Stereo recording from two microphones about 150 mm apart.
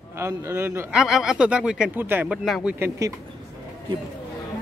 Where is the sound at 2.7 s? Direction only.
15° right (ahead or behind).